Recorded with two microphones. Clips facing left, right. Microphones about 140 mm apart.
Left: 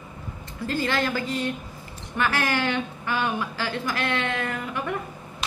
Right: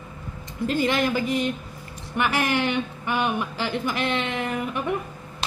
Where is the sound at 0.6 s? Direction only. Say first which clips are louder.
Right 3 dB; 20° right (ahead or behind).